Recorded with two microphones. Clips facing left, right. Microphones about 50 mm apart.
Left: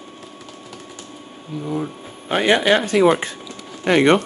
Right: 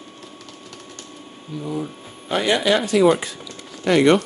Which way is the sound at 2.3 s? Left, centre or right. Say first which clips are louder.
Left 3 dB; left.